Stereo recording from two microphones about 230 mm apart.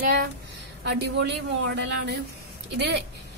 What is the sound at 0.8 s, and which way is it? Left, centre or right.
A woman's voice, right.